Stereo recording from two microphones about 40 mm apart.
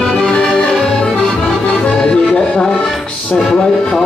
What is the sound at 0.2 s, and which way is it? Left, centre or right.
Music, left.